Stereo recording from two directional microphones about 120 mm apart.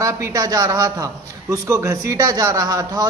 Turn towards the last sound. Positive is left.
turn(degrees=-30)  # may be behind; listen again after turning